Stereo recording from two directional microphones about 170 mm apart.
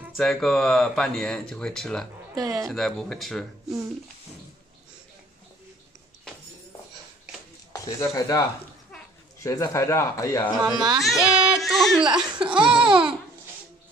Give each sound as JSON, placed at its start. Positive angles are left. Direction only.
{"t": 0.2, "sound": "speech", "side_deg": 0}
{"t": 2.3, "sound": "speech", "side_deg": -20}
{"t": 2.7, "sound": "speech", "side_deg": 0}
{"t": 7.7, "sound": "speech", "side_deg": 20}
{"t": 10.6, "sound": "speech", "side_deg": -25}
{"t": 11.0, "sound": "speech", "side_deg": 0}
{"t": 12.0, "sound": "speech", "side_deg": -25}